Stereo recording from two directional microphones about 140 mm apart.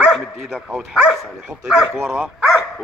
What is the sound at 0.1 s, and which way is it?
Speech, centre (ahead or behind).